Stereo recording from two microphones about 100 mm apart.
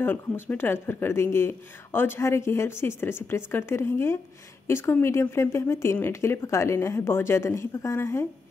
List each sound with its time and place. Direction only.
0.0 s speech: 20° left (ahead or behind)